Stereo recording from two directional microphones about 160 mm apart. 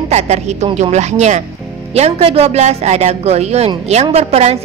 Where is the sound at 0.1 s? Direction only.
45° right (ahead or behind).